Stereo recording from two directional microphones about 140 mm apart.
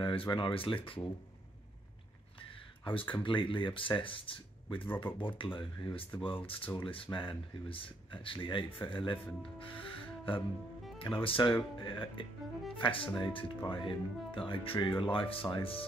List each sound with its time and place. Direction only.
0.0 s speech: 35° left (ahead or behind)
2.8 s speech: 40° left (ahead or behind)
4.8 s speech: 15° left (ahead or behind)
5.3 s speech: 40° left (ahead or behind)
9.6 s music: 40° left (ahead or behind)
11.0 s speech: 40° left (ahead or behind)